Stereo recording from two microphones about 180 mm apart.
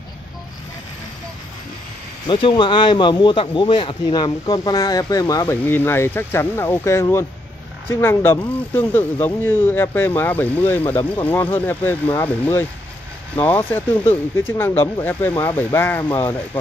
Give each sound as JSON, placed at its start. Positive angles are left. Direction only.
{"t": 2.2, "sound": "speech", "side_deg": 25}